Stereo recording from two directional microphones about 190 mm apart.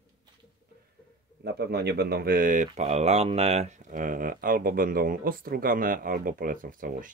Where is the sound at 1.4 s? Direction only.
60° right (ahead or behind).